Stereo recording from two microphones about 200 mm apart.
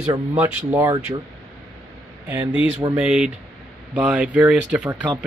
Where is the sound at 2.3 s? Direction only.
10° right (ahead or behind).